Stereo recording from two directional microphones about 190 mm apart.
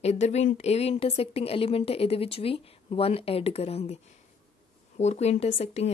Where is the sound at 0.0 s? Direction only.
35° left (ahead or behind).